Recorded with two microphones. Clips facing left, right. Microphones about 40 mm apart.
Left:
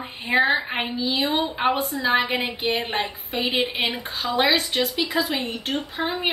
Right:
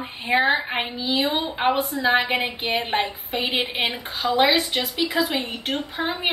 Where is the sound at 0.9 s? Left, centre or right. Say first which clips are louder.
Even; right.